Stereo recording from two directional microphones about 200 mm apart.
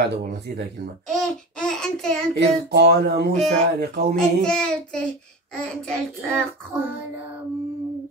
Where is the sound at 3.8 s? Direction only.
55° right (ahead or behind).